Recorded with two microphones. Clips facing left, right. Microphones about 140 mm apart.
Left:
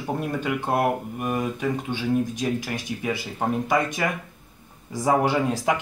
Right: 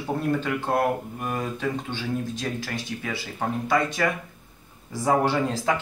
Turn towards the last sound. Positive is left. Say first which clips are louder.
# left 1 dB
turn(degrees=10)  # may be behind; listen again after turning